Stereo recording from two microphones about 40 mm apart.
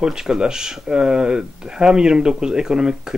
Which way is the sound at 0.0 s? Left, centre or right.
Centre.